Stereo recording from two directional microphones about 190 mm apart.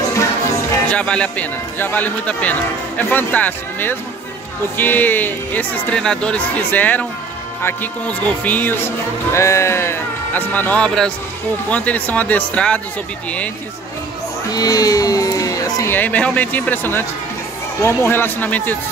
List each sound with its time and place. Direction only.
0.8 s speech: 5° left (ahead or behind)
14.5 s speech: 20° left (ahead or behind)